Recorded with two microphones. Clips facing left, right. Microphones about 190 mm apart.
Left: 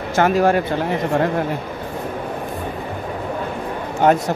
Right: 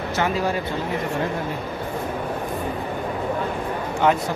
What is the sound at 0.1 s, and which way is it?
Speech, 55° left (ahead or behind).